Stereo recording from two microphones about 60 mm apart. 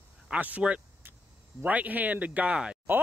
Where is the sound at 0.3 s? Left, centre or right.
Right.